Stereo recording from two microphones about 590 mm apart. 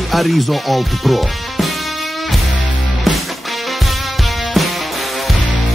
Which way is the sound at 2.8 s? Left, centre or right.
Centre.